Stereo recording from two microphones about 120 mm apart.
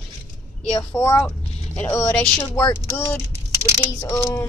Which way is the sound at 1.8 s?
25° left (ahead or behind).